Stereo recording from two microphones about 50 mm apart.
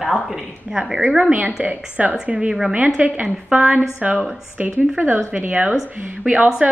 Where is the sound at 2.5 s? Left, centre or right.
Centre.